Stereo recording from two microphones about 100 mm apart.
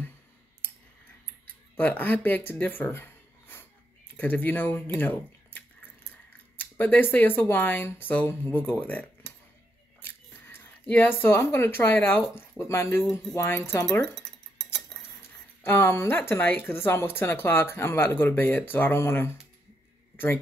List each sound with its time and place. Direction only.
1.8 s speech: 20° left (ahead or behind)
10.0 s speech: 20° left (ahead or behind)
14.0 s cutlery: 5° left (ahead or behind)
15.6 s speech: 20° left (ahead or behind)